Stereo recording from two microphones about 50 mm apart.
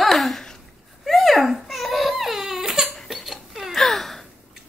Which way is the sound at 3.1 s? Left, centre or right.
Centre.